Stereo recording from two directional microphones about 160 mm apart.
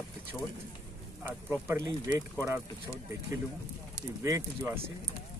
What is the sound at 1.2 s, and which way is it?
Speech, 15° right (ahead or behind).